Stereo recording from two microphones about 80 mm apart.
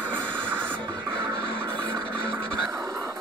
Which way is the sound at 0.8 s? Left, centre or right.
Right.